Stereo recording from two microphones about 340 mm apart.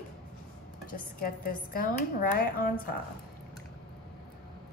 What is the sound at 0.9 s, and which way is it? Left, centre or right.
A woman's voice, left.